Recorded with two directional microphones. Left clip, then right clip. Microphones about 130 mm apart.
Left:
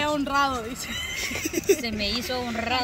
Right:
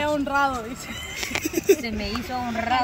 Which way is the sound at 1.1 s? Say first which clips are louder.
Right 5 dB; 15° right (ahead or behind).